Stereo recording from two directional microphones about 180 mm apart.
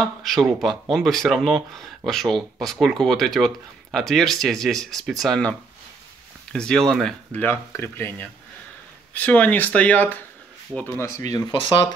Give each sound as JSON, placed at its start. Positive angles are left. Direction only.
{"t": 0.0, "sound": "speech", "side_deg": 0}
{"t": 11.3, "sound": "speech", "side_deg": 25}